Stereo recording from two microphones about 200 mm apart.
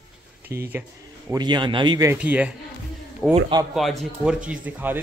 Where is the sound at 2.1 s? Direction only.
5° right (ahead or behind).